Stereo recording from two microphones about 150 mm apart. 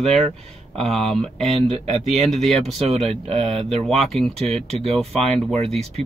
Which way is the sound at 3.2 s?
45° right (ahead or behind).